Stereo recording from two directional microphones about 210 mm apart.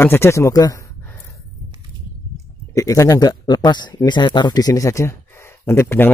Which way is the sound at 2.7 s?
15° left (ahead or behind).